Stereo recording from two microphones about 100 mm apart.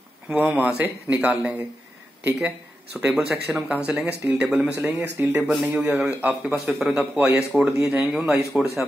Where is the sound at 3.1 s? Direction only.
5° right (ahead or behind).